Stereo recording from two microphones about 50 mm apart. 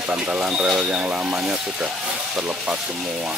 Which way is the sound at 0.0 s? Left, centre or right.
Right.